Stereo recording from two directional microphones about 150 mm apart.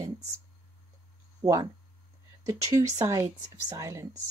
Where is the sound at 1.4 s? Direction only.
25° right (ahead or behind).